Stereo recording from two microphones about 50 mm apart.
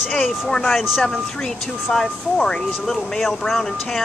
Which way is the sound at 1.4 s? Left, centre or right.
Centre.